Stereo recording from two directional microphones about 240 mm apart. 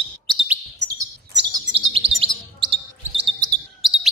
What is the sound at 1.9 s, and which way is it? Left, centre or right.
Chirp, right.